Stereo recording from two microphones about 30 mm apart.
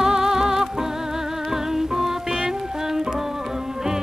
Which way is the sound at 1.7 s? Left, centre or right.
Centre.